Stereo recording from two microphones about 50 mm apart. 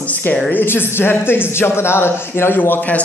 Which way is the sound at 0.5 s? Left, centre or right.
Left.